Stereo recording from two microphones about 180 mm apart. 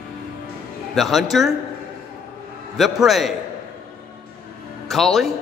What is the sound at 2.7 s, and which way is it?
Speech, centre (ahead or behind).